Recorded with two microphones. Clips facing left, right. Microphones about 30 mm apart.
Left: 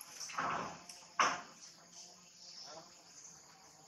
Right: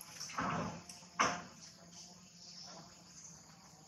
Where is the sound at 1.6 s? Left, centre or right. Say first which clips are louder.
Right 1 dB; centre.